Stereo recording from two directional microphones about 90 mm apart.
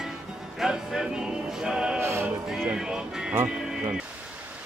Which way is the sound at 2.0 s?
30° right (ahead or behind).